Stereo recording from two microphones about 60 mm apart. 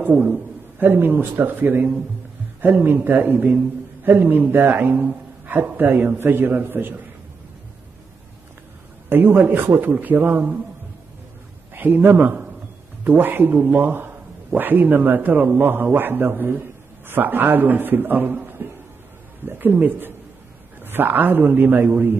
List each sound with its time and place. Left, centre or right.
0.0 s a man's voice: right
9.1 s a man's voice: right
11.7 s a man's voice: right